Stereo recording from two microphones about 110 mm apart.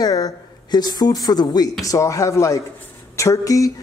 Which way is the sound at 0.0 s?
35° left (ahead or behind).